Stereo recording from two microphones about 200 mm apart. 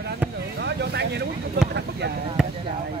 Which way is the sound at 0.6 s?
60° right (ahead or behind).